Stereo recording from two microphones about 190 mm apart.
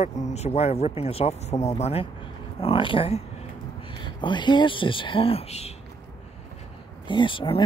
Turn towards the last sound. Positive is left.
turn(degrees=25)  # may be behind; listen again after turning